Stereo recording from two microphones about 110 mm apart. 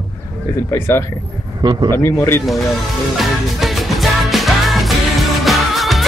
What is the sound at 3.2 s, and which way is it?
Music, centre (ahead or behind).